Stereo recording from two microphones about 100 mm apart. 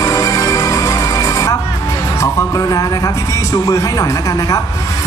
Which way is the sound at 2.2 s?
35° left (ahead or behind).